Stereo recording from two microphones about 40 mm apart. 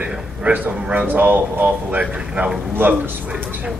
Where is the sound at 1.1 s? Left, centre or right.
Right.